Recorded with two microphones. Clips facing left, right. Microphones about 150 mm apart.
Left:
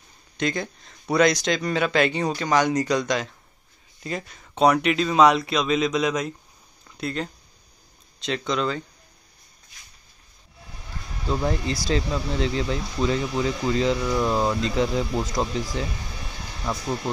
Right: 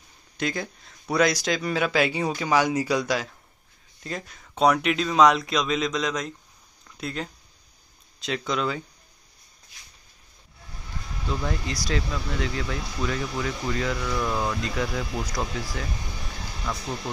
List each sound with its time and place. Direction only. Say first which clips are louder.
0.4 s speech: left 3 dB; 5° right (ahead or behind)
11.2 s speech: left 5 dB; 30° left (ahead or behind)